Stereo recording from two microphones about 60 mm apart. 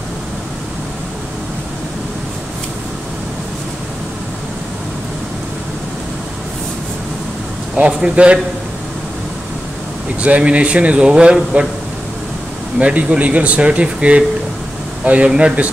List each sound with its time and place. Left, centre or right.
7.7 s speech: right
10.2 s speech: right
12.7 s speech: centre